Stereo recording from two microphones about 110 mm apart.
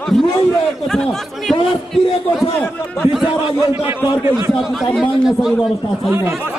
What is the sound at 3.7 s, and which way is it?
Speech, 20° right (ahead or behind).